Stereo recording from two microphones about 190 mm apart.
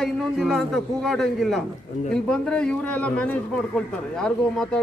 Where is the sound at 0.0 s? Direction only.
Centre (ahead or behind).